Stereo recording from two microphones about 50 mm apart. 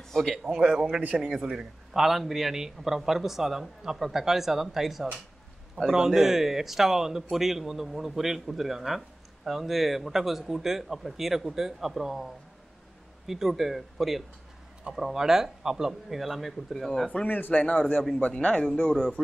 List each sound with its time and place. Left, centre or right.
0.6 s a man's voice: centre
13.3 s a man's voice: centre
17.3 s a man's voice: left
17.6 s a man's voice: left; by 19.2 s centre